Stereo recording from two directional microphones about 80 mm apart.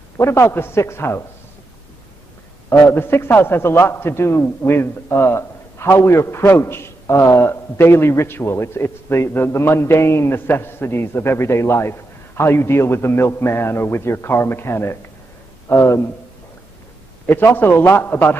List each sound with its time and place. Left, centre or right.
0.2 s a man's voice: left
2.9 s a man's voice: left
17.3 s a man's voice: left